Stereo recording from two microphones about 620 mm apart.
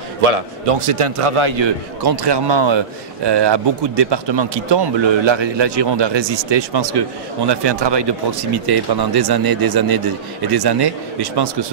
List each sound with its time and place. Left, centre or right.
0.2 s a man's voice: right
2.0 s speech: right